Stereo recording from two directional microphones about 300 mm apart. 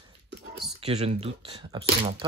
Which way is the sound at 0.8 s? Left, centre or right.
Right.